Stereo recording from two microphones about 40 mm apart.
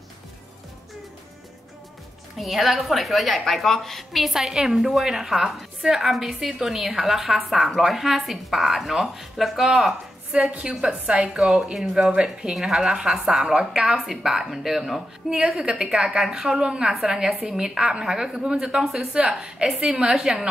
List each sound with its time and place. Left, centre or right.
2.3 s a woman's voice: centre
10.6 s a woman's voice: right
11.2 s a woman's voice: centre
15.6 s a woman's voice: centre